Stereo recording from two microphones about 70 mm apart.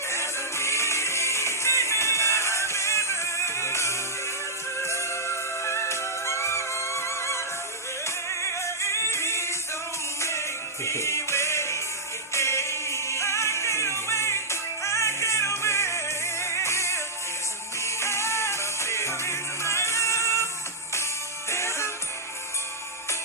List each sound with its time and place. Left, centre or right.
0.1 s music: left
10.9 s music: left
21.5 s music: left